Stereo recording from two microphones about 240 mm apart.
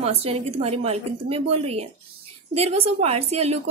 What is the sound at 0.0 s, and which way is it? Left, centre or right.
A woman's voice, right.